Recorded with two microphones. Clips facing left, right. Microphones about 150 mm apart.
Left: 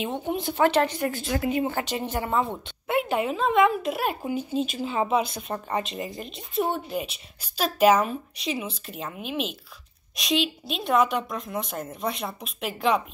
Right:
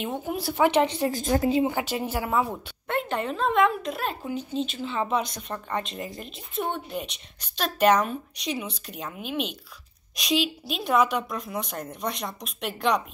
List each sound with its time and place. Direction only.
0.0 s a woman's voice: 5° right (ahead or behind); by 1.1 s 25° right (ahead or behind)
1.1 s a woman's voice: 40° right (ahead or behind)
1.6 s a woman's voice: 15° right (ahead or behind)
2.9 s speech: 10° left (ahead or behind)